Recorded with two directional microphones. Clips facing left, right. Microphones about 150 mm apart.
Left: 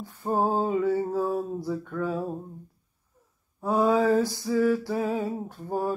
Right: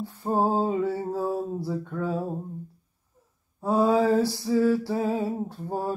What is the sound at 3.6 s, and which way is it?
Lullaby, 30° right (ahead or behind).